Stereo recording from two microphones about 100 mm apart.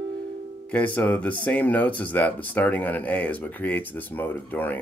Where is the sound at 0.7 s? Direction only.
15° left (ahead or behind).